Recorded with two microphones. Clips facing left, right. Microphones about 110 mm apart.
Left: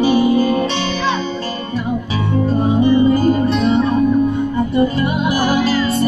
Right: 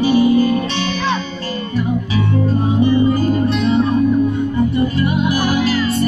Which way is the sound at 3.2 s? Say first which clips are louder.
Left 2 dB; 35° left (ahead or behind).